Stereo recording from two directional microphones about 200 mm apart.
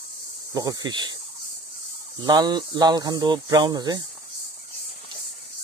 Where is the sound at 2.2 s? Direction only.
20° right (ahead or behind).